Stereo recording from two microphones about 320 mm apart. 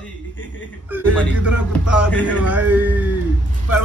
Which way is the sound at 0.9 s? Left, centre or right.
Centre.